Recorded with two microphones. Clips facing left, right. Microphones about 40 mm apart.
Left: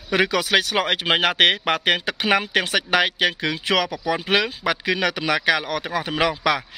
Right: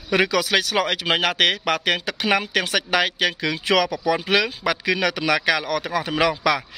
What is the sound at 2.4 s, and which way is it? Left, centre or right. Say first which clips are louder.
Speech: left 1 dB; centre.